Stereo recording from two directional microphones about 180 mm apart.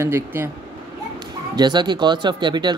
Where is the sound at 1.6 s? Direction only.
25° right (ahead or behind).